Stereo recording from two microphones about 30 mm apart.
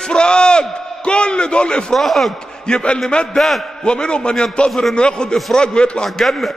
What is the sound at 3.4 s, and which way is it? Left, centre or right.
Speech, centre.